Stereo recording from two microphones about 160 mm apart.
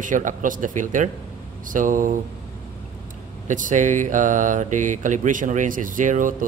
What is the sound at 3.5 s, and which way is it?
Speech, 55° right (ahead or behind).